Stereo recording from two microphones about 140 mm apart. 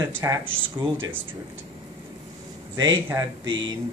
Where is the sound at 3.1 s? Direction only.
35° right (ahead or behind).